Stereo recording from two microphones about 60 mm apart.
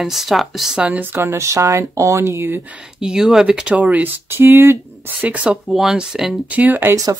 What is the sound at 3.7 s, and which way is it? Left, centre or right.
Speech, right.